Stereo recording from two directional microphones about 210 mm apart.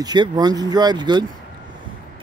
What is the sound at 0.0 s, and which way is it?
Speech, 20° right (ahead or behind).